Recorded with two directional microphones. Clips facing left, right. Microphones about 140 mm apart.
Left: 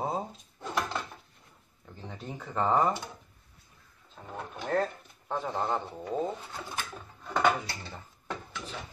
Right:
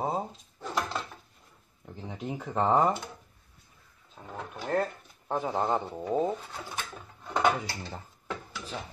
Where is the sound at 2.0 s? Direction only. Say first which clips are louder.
Right 5 dB; 10° right (ahead or behind).